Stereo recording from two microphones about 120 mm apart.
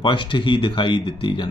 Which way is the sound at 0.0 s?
40° left (ahead or behind).